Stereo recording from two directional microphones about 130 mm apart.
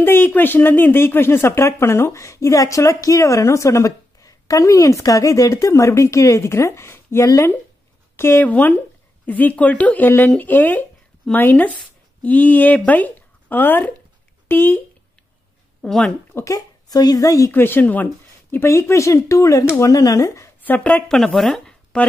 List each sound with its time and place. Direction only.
0.0 s speech: 15° left (ahead or behind)
15.8 s speech: 5° left (ahead or behind)
16.3 s speech: 25° left (ahead or behind)
17.5 s speech: 15° left (ahead or behind)
21.4 s a sound: 5° left (ahead or behind)